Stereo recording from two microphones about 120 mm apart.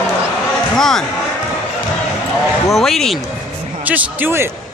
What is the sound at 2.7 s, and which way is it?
Speech, 5° left (ahead or behind).